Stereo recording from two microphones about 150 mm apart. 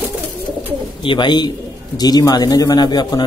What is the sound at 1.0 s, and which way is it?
A man's voice, 35° left (ahead or behind).